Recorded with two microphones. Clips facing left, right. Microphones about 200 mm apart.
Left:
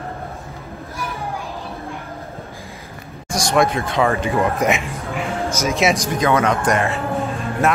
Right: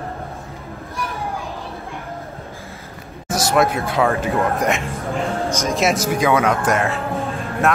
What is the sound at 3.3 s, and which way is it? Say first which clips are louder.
Speech: even; 5° right (ahead or behind).